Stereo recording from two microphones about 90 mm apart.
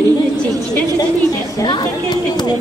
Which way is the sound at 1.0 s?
45° left (ahead or behind).